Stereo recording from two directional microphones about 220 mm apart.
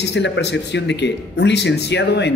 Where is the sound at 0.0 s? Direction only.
50° left (ahead or behind).